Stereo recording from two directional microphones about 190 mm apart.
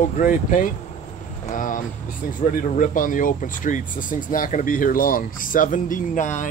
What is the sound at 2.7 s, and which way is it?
Speech, 45° left (ahead or behind).